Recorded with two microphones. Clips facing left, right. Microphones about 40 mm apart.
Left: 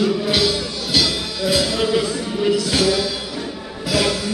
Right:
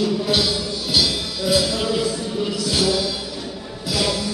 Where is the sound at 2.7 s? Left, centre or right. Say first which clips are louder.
Left 2 dB; left.